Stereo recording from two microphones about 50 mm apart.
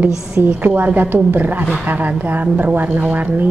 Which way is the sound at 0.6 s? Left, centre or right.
Right.